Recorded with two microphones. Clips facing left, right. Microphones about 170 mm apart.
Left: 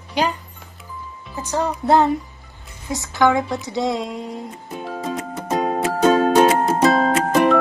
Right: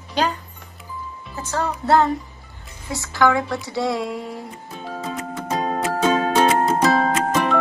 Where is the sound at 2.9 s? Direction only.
20° left (ahead or behind).